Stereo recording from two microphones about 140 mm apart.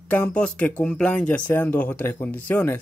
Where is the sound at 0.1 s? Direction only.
10° left (ahead or behind).